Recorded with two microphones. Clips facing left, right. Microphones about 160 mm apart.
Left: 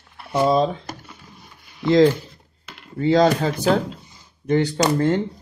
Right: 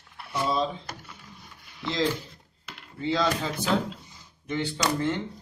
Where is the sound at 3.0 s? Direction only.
45° left (ahead or behind).